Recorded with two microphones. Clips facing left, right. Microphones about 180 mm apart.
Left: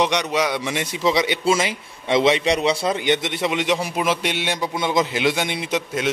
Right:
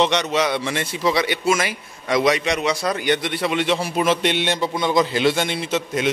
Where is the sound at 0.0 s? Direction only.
10° left (ahead or behind).